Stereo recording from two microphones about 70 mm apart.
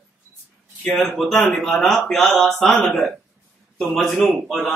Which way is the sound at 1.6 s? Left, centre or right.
Centre.